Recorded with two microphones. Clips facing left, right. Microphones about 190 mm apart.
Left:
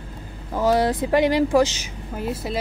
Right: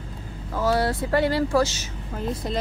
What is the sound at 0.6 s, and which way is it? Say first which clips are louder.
A woman's voice: left 3 dB; 15° left (ahead or behind).